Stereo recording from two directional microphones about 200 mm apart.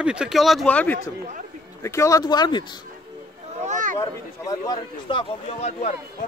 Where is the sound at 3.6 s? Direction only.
40° right (ahead or behind).